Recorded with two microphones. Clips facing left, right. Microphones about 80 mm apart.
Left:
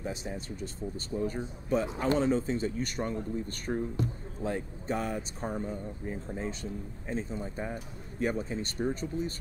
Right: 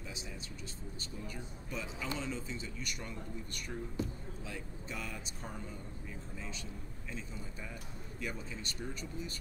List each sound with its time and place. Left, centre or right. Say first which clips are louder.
0.0 s speech: left 10 dB; left